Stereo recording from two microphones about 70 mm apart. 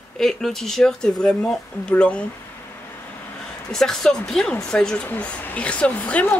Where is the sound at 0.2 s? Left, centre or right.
Centre.